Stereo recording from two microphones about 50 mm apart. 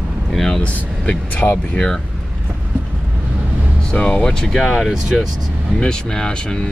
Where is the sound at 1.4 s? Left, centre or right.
Left.